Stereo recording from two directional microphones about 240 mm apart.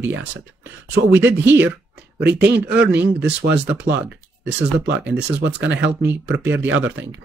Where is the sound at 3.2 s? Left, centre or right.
Right.